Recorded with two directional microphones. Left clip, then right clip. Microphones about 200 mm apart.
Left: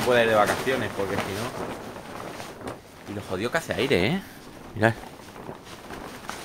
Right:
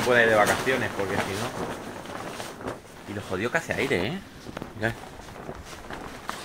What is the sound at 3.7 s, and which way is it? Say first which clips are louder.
Speech: left 3 dB; 50° left (ahead or behind).